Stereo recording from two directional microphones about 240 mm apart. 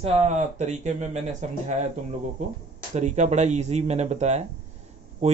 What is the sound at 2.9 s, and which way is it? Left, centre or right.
Speech, right.